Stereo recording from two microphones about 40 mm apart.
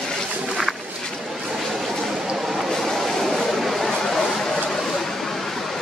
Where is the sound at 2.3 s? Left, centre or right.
Centre.